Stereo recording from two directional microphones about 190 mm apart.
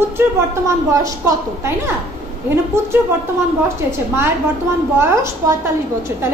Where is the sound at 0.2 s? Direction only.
10° right (ahead or behind).